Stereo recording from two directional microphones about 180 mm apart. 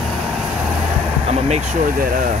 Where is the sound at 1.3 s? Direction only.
40° right (ahead or behind).